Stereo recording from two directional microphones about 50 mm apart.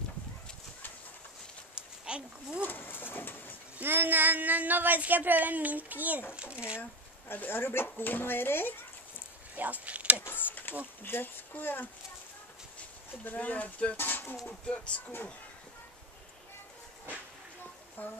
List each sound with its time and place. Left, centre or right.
1.8 s a sound: centre
2.6 s speech: left
3.8 s speech: right
6.3 s speech: right
6.8 s speech: left
9.6 s speech: right
10.7 s speech: left
13.2 s speech: left
13.9 s bird: left
14.7 s speech: left
18.0 s speech: left